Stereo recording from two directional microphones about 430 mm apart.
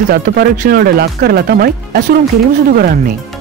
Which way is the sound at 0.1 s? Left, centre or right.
Right.